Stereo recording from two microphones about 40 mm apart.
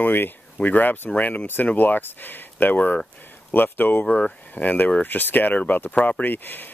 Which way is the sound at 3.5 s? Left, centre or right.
Left.